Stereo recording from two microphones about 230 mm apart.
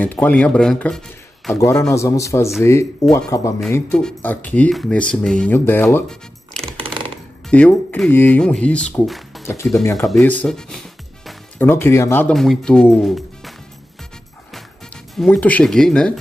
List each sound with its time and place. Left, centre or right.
0.0 s a man's voice: centre
1.6 s a man's voice: centre
6.6 s typewriter: right
7.4 s speech: centre
9.4 s speech: centre
15.1 s speech: centre